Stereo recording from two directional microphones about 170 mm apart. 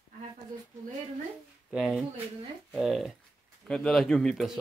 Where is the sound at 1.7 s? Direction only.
5° right (ahead or behind).